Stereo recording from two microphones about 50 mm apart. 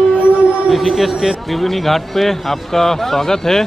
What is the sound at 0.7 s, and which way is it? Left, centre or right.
A man's voice, centre.